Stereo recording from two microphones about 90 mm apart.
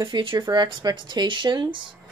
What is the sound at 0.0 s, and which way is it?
Speech, 65° right (ahead or behind).